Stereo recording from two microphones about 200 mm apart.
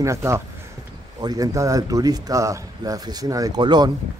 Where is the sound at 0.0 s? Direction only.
15° right (ahead or behind).